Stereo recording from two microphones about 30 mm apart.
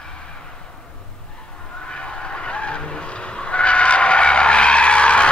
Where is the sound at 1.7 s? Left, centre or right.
Left.